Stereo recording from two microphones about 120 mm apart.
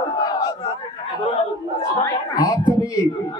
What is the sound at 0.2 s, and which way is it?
Battle cry, 35° left (ahead or behind).